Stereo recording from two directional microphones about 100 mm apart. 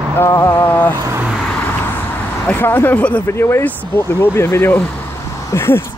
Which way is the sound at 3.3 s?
25° left (ahead or behind).